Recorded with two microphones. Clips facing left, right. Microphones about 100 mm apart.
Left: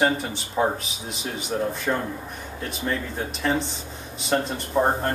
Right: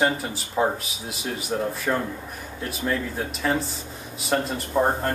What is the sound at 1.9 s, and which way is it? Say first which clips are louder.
Speech: right 1 dB; centre (ahead or behind).